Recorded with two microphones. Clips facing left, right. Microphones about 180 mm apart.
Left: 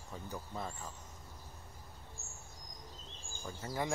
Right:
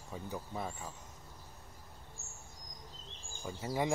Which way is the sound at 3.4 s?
15° right (ahead or behind).